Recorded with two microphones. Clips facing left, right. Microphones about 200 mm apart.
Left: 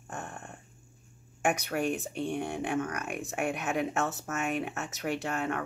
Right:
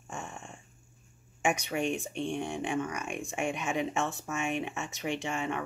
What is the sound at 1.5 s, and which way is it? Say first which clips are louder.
Speech: left 1 dB; 5° left (ahead or behind).